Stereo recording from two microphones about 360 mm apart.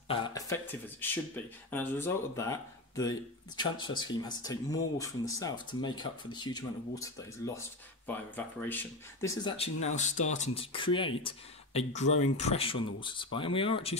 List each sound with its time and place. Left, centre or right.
0.1 s speech: centre